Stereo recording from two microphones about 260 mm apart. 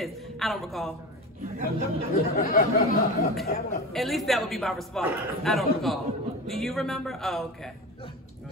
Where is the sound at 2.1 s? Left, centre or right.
Left.